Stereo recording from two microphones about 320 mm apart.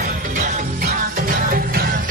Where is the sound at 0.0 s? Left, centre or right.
Right.